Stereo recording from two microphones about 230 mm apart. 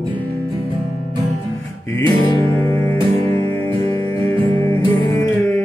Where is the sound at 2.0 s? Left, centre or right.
Centre.